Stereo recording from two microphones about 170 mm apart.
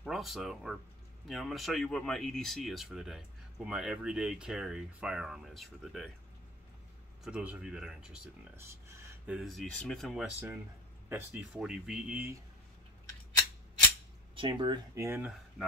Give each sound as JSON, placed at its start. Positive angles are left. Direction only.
{"t": 0.0, "sound": "speech", "side_deg": 0}
{"t": 7.2, "sound": "speech", "side_deg": -5}
{"t": 11.1, "sound": "speech", "side_deg": -10}
{"t": 14.3, "sound": "speech", "side_deg": -30}
{"t": 15.0, "sound": "speech", "side_deg": -10}